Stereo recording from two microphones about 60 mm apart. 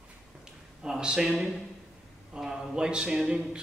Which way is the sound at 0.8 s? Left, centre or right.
Centre.